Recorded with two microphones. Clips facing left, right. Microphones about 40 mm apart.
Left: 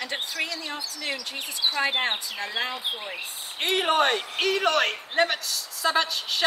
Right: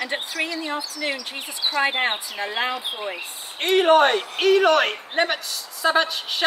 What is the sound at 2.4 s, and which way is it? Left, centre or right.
Speech, right.